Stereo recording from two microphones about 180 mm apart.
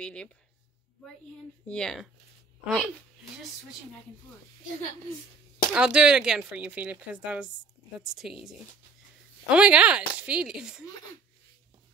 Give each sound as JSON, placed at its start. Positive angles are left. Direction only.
{"t": 0.0, "sound": "speech", "side_deg": 5}
{"t": 1.7, "sound": "speech", "side_deg": 0}
{"t": 5.7, "sound": "speech", "side_deg": -5}